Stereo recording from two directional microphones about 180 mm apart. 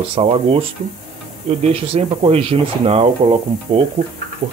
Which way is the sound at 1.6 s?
35° right (ahead or behind).